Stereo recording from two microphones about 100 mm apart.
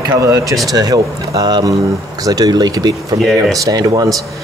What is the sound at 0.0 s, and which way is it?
Speech, 40° right (ahead or behind).